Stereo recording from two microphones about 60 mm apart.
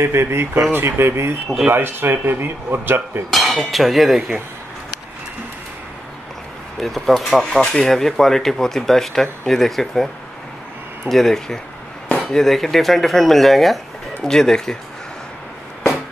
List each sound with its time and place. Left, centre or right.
0.0 s speech: right
3.3 s speech: centre
6.8 s speech: centre
11.1 s speech: centre